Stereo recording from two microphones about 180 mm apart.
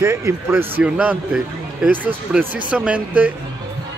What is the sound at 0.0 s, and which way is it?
A man's voice, 15° right (ahead or behind).